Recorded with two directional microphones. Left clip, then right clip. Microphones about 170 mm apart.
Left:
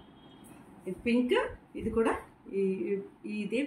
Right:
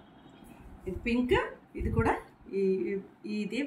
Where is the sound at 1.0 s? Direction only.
15° right (ahead or behind).